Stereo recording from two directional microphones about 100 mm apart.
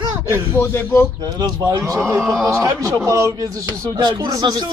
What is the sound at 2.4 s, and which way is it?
Speech, 30° right (ahead or behind).